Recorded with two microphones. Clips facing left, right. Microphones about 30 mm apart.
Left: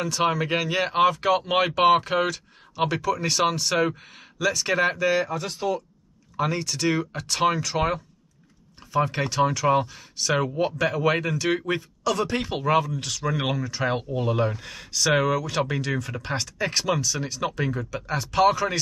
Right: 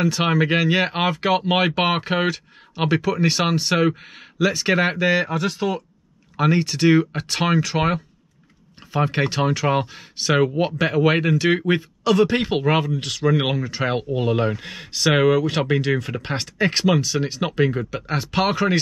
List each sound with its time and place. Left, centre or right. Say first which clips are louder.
0.0 s speech: right 4 dB; right
6.3 s speech: right 6 dB; right
14.1 s speech: right 4 dB; right